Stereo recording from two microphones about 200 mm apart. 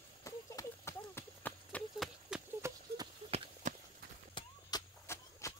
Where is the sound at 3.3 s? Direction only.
30° right (ahead or behind).